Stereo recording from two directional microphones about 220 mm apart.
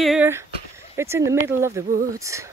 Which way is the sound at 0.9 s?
10° right (ahead or behind).